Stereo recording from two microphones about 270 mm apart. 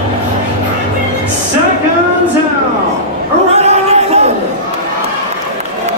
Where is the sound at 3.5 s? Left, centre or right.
Right.